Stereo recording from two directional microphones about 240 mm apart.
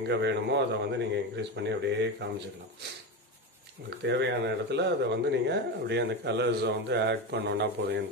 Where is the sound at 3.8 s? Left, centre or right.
Right.